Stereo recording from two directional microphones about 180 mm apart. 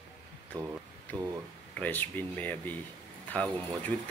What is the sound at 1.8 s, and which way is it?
Speech, 10° left (ahead or behind).